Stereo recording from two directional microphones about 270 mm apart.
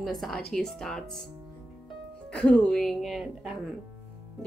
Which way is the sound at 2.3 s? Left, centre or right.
Centre.